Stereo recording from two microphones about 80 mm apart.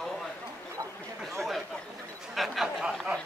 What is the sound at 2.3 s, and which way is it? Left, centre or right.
Speech, centre.